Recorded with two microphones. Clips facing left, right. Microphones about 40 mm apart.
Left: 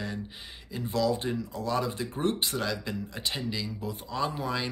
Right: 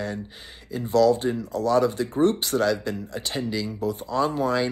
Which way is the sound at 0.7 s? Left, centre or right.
Left.